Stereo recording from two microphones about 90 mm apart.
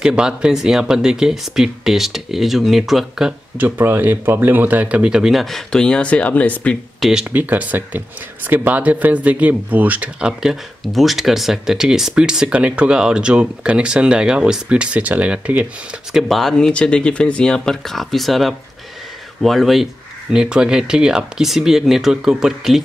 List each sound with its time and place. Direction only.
0.0 s speech: 10° right (ahead or behind)
3.5 s speech: 20° right (ahead or behind); by 6.8 s 15° left (ahead or behind)
7.0 s speech: 5° right (ahead or behind)
7.3 s speech: 20° right (ahead or behind)
16.1 s speech: centre (ahead or behind)